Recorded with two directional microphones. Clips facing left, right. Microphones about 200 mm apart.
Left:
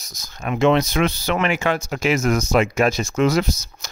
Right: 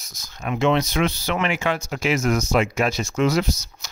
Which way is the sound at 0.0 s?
40° left (ahead or behind).